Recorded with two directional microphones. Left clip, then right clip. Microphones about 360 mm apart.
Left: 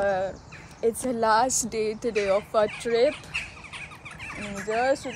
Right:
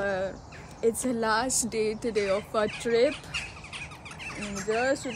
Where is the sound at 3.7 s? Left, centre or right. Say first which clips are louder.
Left 1 dB; centre.